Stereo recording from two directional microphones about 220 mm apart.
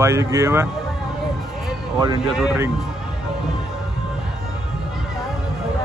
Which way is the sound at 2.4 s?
5° right (ahead or behind).